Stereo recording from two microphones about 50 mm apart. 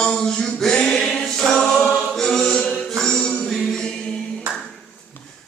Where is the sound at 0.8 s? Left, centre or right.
Centre.